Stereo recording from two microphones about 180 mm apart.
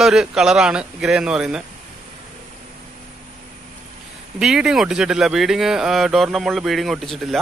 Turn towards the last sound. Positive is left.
turn(degrees=0)  # may be behind; listen again after turning